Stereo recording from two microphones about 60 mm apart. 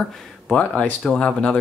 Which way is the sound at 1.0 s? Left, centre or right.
Centre.